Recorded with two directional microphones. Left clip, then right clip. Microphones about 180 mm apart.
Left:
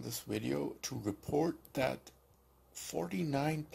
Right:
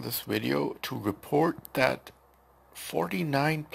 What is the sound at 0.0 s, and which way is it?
Speech, 5° left (ahead or behind).